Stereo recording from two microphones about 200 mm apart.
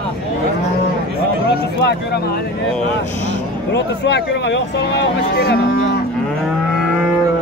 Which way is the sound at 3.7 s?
60° left (ahead or behind).